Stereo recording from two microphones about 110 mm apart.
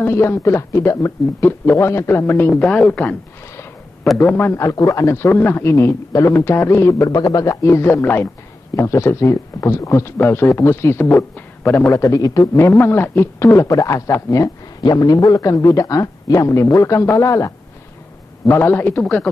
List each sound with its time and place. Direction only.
0.0 s a man's voice: 20° left (ahead or behind)
2.5 s a man's voice: 5° left (ahead or behind)
4.2 s a man's voice: 20° left (ahead or behind)
11.1 s a man's voice: 10° left (ahead or behind)
11.9 s a man's voice: 30° left (ahead or behind)
18.5 s a man's voice: 20° left (ahead or behind)